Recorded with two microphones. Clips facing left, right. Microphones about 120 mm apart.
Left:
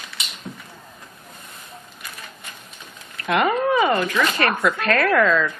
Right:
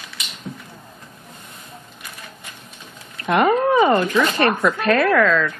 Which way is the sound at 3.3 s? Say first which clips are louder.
Right 3 dB; centre (ahead or behind).